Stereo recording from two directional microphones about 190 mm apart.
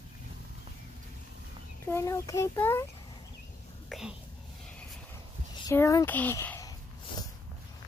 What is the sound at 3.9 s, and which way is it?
Whispering, centre (ahead or behind).